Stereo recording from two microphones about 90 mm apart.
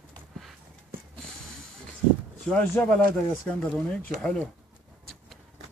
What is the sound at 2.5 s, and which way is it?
Speech, 20° left (ahead or behind).